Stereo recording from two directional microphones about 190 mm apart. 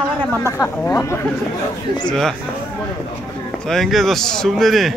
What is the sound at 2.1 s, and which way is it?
Speech, centre (ahead or behind).